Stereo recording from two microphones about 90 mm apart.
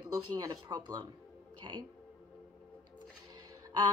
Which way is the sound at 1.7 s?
60° right (ahead or behind).